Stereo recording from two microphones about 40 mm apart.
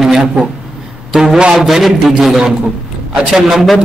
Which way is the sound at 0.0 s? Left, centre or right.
Centre.